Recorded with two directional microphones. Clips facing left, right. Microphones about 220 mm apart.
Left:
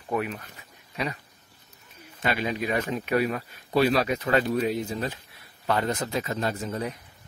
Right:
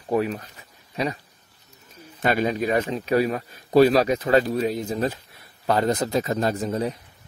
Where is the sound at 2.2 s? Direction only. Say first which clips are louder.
Right 5 dB; 45° right (ahead or behind).